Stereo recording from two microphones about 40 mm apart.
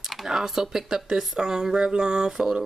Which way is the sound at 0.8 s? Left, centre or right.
Centre.